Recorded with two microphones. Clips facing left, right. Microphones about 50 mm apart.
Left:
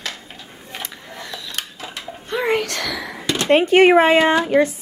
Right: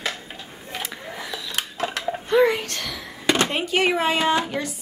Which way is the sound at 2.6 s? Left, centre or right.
Left.